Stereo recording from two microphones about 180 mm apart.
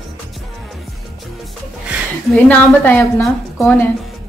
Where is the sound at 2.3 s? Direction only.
5° left (ahead or behind).